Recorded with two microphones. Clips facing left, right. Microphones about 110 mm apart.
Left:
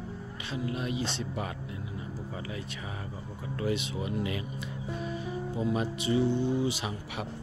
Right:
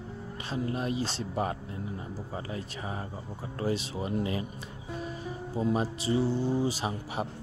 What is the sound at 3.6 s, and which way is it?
Speech, 35° right (ahead or behind).